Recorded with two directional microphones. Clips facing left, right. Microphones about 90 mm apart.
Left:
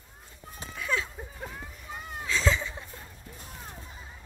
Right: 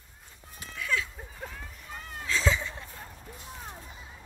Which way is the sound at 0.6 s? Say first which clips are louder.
Left 1 dB; 30° left (ahead or behind).